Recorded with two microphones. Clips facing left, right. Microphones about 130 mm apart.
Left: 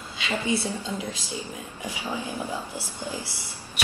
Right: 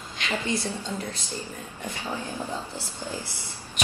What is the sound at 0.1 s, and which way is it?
Speech, 15° left (ahead or behind).